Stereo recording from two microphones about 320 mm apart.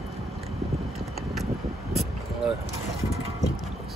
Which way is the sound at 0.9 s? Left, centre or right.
Centre.